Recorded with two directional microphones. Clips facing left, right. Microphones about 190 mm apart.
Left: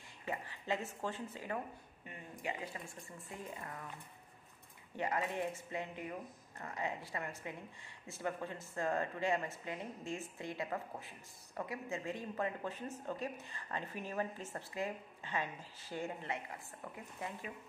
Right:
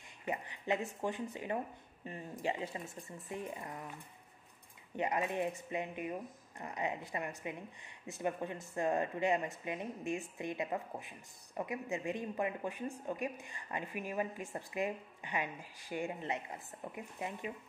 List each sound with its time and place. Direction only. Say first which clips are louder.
0.2 s speech: right 3 dB; 20° right (ahead or behind)
2.0 s speech: right 5 dB; 30° right (ahead or behind)
4.9 s speech: right 3 dB; 20° right (ahead or behind)